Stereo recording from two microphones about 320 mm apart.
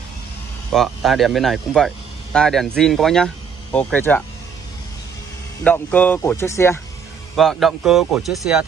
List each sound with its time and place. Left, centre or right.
0.7 s a man's voice: centre
5.6 s a man's voice: centre